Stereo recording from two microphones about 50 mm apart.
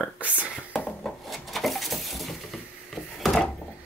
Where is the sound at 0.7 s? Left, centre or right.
Centre.